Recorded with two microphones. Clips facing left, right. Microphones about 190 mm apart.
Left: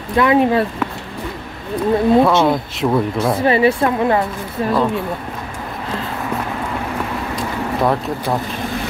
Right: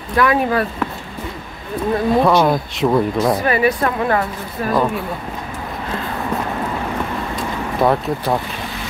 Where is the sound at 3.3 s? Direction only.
25° left (ahead or behind).